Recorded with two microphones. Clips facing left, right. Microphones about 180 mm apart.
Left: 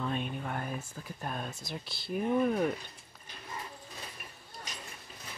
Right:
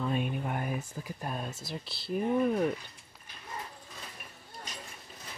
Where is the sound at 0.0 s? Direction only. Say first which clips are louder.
Right 3 dB; 5° right (ahead or behind).